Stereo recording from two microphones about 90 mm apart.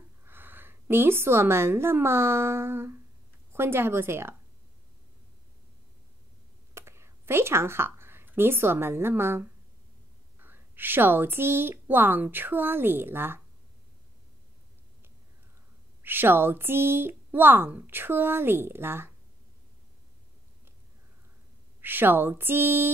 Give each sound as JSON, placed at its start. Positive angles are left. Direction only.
{"t": 0.2, "sound": "a woman's voice", "side_deg": -25}
{"t": 6.7, "sound": "speech", "side_deg": -30}
{"t": 16.0, "sound": "speech", "side_deg": -25}
{"t": 21.8, "sound": "speech", "side_deg": -25}